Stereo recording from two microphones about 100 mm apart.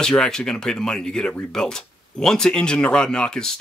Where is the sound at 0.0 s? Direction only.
5° left (ahead or behind).